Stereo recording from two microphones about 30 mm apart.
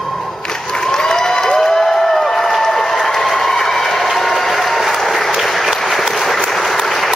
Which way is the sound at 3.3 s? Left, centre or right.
Centre.